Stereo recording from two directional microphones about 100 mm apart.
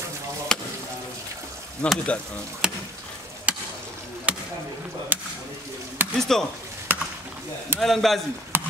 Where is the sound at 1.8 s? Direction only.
10° left (ahead or behind).